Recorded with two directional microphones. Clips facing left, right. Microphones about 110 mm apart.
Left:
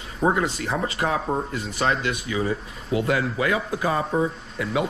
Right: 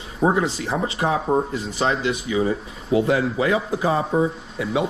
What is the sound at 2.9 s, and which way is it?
Speech, 30° right (ahead or behind).